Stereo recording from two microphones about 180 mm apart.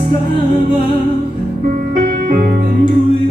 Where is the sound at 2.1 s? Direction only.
50° right (ahead or behind).